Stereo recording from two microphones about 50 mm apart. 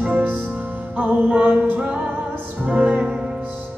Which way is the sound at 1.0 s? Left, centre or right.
Right.